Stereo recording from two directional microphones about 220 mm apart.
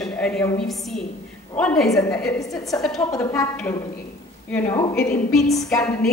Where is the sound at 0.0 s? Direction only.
5° left (ahead or behind).